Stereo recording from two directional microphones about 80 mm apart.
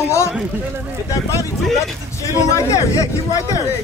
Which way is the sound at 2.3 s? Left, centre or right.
Left.